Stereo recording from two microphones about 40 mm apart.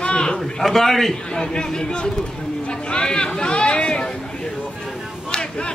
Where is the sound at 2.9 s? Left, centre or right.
Left.